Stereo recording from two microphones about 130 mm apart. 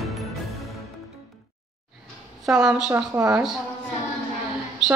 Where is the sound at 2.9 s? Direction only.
20° right (ahead or behind).